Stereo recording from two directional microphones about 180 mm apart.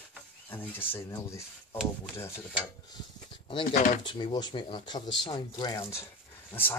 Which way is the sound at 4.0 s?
25° left (ahead or behind).